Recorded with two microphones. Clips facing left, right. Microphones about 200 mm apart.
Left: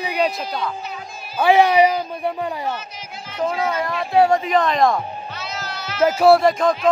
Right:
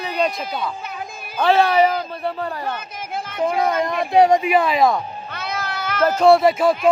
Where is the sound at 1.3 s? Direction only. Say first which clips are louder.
Left 2 dB; 15° left (ahead or behind).